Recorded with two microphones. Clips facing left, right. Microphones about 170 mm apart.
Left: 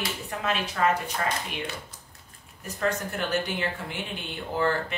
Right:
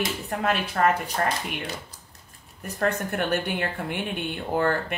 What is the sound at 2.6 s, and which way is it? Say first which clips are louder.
Speech: right 2 dB; 60° right (ahead or behind).